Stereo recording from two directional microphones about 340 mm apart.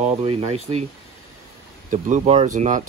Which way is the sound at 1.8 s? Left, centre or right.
Right.